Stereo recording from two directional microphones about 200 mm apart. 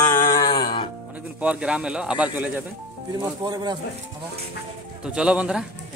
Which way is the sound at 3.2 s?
20° right (ahead or behind).